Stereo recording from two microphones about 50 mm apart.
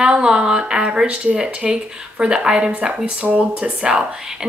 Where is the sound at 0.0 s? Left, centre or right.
Centre.